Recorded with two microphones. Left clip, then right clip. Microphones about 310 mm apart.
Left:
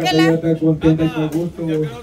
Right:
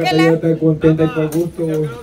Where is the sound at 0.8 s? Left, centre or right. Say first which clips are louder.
Right 3 dB; left.